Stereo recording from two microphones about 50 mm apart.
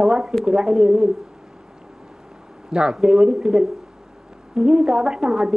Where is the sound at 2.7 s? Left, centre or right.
Centre.